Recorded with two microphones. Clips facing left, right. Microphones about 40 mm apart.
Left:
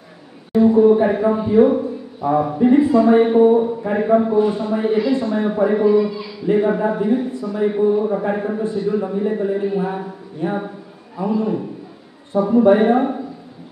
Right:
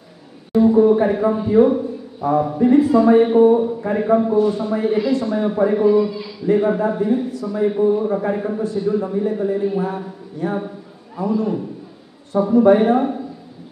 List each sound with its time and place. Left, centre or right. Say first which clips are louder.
0.5 s a man's voice: left 1 dB; centre
2.9 s a man's voice: even; centre
4.4 s a man's voice: even; left